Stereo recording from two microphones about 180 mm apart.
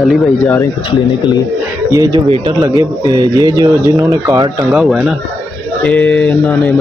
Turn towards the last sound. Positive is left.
turn(degrees=10)  # may be behind; listen again after turning